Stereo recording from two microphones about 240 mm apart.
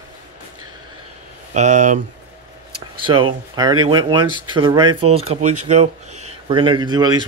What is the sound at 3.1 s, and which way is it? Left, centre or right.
Speech, right.